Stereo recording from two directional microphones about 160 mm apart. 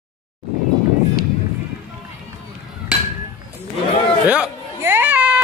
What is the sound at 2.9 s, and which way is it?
Hammer, 5° right (ahead or behind).